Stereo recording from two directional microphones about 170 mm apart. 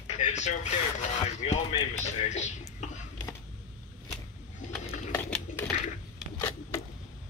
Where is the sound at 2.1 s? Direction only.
45° left (ahead or behind).